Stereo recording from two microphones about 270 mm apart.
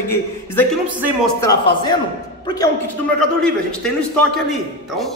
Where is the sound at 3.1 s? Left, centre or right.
Centre.